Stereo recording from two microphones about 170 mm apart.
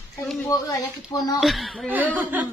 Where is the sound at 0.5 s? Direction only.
25° left (ahead or behind).